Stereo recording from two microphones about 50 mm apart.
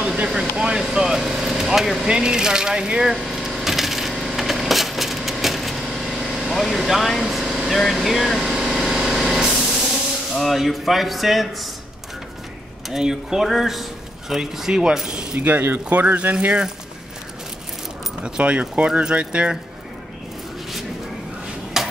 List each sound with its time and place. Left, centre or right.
0.0 s air conditioning: right
0.3 s speech: centre
0.9 s vehicle: centre
2.0 s speech: centre
3.3 s coin: centre
7.9 s speech: centre
8.5 s vehicle: centre
12.9 s speech: centre
15.3 s speech: right
18.2 s speech: right
21.8 s tick-tock: centre